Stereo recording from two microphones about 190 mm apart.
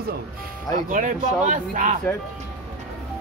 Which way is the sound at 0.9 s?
40° right (ahead or behind).